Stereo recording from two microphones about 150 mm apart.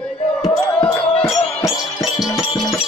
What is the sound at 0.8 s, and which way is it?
Music, 40° left (ahead or behind).